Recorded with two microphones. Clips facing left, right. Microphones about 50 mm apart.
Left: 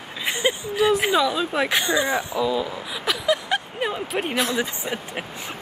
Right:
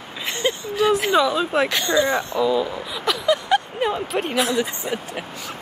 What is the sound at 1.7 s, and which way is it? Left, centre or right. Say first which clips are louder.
Speech: right 2 dB; centre.